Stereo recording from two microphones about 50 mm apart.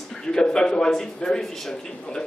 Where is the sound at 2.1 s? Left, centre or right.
Centre.